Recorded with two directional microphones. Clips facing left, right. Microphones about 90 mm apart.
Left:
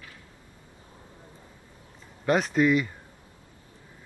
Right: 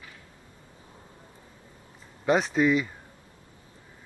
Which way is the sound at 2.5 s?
15° right (ahead or behind).